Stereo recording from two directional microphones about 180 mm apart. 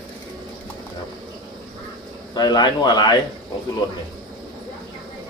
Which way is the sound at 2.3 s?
25° left (ahead or behind).